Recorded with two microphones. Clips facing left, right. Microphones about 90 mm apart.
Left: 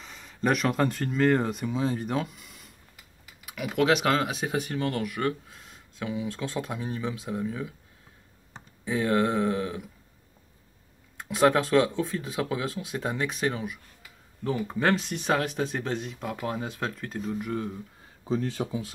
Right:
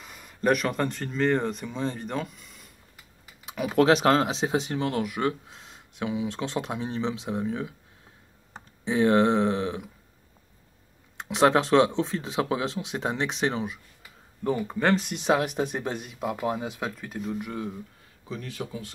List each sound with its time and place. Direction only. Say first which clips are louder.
0.0 s speech: right 2 dB; 5° right (ahead or behind)
3.4 s speech: right 3 dB; 30° right (ahead or behind)
8.8 s speech: right 4 dB; 25° right (ahead or behind)
11.1 s speech: right 1 dB; 20° right (ahead or behind)
14.6 s speech: even; centre (ahead or behind)
15.0 s speech: right 2 dB; 15° right (ahead or behind)
18.3 s speech: left 6 dB; 30° left (ahead or behind)